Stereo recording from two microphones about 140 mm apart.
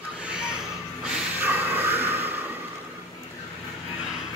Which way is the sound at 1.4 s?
15° right (ahead or behind).